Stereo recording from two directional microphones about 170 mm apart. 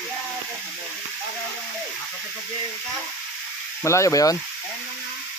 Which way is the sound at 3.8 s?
20° left (ahead or behind).